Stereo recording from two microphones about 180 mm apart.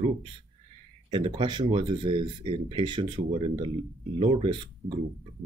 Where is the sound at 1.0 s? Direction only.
30° right (ahead or behind).